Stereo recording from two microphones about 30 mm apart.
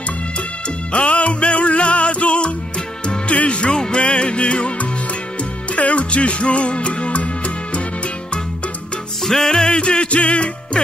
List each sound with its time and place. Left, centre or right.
0.9 s music: left
3.7 s music: left
4.0 s music: left
9.2 s music: centre
9.7 s music: left